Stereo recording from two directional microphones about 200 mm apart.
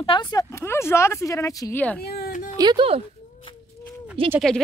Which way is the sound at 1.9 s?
50° left (ahead or behind).